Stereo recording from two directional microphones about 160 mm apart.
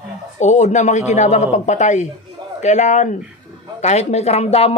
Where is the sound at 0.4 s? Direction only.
45° left (ahead or behind).